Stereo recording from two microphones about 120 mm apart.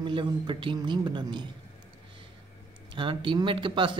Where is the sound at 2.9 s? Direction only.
45° right (ahead or behind).